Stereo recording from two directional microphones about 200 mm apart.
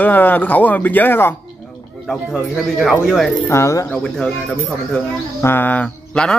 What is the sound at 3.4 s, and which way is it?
Speech, 15° left (ahead or behind).